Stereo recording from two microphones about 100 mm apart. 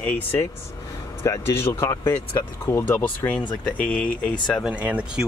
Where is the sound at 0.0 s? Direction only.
20° left (ahead or behind).